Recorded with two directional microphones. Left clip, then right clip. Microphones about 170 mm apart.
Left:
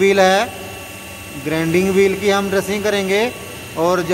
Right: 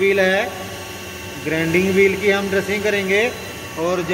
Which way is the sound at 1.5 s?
25° left (ahead or behind).